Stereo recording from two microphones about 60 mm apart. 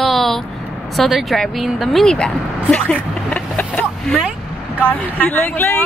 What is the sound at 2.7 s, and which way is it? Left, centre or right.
Vehicle, left.